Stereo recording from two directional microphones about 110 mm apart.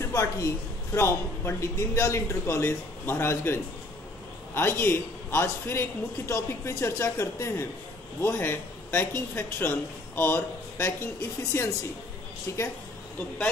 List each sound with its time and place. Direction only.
0.0 s a woman's voice: 30° left (ahead or behind)
4.6 s a man's voice: 20° left (ahead or behind)
12.5 s a man's voice: 25° left (ahead or behind)